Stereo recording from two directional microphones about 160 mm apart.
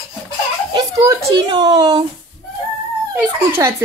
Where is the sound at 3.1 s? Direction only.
15° right (ahead or behind).